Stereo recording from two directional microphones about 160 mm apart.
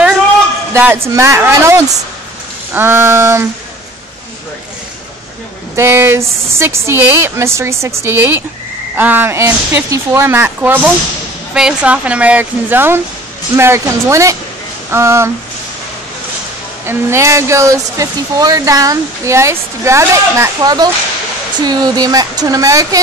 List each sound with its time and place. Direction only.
0.7 s speech: 15° right (ahead or behind)
5.8 s speech: 15° right (ahead or behind)
16.8 s speech: 15° right (ahead or behind)